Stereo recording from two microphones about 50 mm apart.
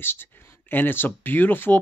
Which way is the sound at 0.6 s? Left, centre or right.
Left.